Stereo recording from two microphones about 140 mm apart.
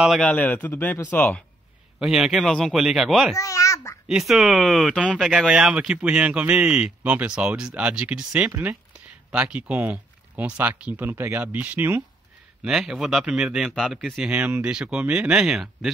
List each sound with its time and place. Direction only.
0.2 s speech: 10° left (ahead or behind)
2.0 s speech: 5° right (ahead or behind)
3.3 s a child's voice: 25° left (ahead or behind)
4.1 s speech: centre (ahead or behind)